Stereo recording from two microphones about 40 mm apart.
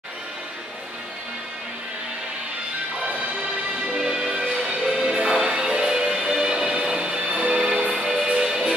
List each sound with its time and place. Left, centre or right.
3.7 s music: centre